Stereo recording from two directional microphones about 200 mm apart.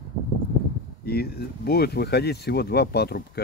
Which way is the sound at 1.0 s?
50° left (ahead or behind).